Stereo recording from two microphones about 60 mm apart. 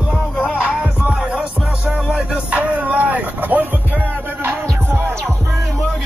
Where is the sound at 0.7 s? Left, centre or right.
Centre.